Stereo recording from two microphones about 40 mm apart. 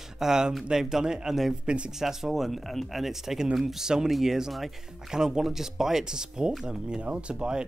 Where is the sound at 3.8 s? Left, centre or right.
Centre.